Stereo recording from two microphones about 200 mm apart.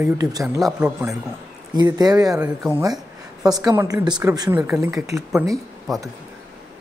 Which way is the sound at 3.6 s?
20° right (ahead or behind).